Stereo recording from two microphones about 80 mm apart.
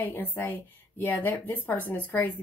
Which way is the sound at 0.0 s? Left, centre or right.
Left.